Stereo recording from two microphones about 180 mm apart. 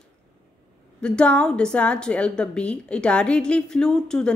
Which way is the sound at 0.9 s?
5° left (ahead or behind).